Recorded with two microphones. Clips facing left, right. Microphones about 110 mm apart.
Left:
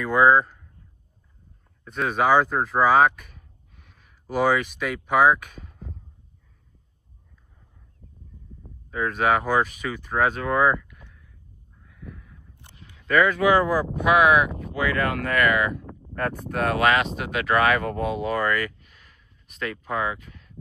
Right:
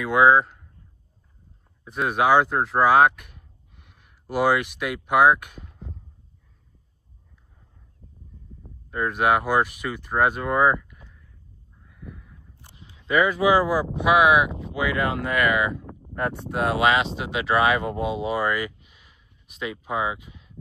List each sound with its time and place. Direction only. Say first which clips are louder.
0.0 s speech: right 1 dB; 5° right (ahead or behind)
1.9 s speech: right 1 dB; 5° right (ahead or behind)
8.6 s speech: even; 5° right (ahead or behind)
11.8 s crow: even; 5° right (ahead or behind)
12.9 s speech: left 1 dB; 15° right (ahead or behind)
18.2 s a sound: left 1 dB; 10° right (ahead or behind)
19.9 s speech: right 1 dB; 10° right (ahead or behind)